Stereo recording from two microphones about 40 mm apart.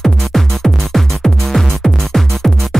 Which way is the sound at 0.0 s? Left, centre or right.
Centre.